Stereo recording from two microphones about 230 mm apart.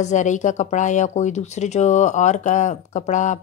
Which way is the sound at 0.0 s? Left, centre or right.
Left.